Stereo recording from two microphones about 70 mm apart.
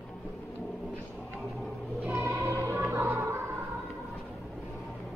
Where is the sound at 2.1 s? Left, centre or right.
Right.